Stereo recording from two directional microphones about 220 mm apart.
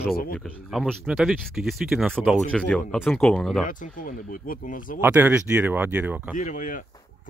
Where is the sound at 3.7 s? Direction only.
35° left (ahead or behind).